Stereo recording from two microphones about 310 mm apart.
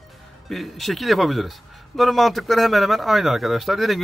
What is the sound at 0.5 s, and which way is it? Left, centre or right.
Speech, centre.